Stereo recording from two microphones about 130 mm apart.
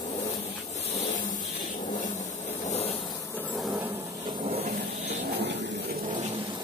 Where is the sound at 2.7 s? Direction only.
55° left (ahead or behind).